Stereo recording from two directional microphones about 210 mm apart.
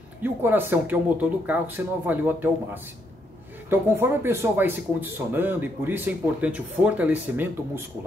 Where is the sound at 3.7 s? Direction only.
10° right (ahead or behind).